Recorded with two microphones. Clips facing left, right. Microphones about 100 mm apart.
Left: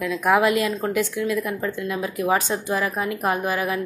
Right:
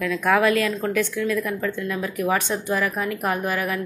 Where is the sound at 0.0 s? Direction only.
15° left (ahead or behind).